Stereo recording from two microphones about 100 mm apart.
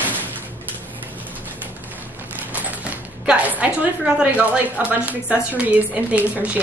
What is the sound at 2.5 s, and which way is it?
A woman's voice, 15° right (ahead or behind).